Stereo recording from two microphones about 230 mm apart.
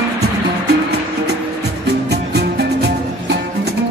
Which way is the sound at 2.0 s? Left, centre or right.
Right.